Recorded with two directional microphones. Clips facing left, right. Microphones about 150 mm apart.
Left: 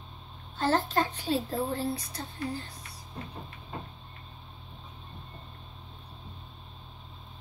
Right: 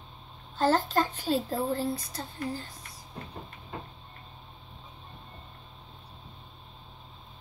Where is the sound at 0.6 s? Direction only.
45° right (ahead or behind).